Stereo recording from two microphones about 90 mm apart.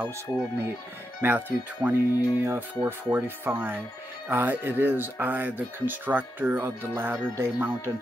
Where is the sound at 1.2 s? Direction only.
20° right (ahead or behind).